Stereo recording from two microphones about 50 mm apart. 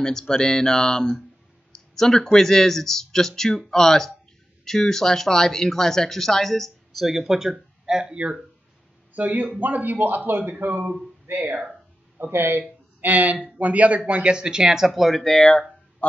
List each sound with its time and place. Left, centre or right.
0.0 s speech: centre; by 8.4 s right
9.1 s speech: right
11.3 s speech: right; by 14.9 s centre
14.9 s speech: centre
16.0 s fowl: left